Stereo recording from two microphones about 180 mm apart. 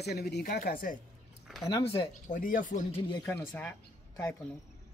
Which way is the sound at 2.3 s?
45° left (ahead or behind).